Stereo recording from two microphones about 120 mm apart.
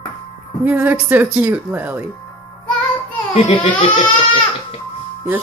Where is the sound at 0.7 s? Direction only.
15° right (ahead or behind).